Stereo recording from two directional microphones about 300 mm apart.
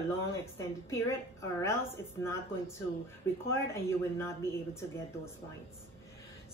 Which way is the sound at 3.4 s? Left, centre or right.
Centre.